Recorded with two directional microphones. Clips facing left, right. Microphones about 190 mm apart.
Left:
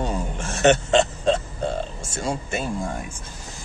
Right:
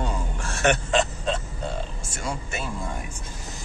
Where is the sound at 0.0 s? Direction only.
20° left (ahead or behind).